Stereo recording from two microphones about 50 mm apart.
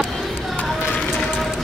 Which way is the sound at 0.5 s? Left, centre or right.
Left.